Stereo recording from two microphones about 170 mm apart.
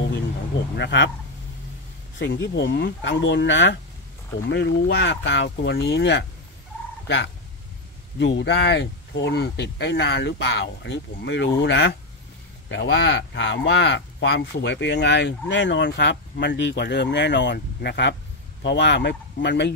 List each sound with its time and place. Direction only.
0.7 s speech: 90° left
2.1 s speech: 90° left
8.2 s speech: 90° left